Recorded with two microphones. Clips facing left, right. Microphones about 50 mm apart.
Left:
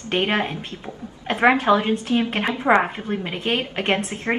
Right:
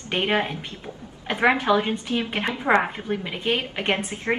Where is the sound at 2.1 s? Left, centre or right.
Left.